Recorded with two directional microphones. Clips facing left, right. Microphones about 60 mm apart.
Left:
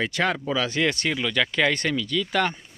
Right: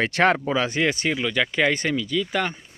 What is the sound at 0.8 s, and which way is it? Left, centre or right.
Speech, centre.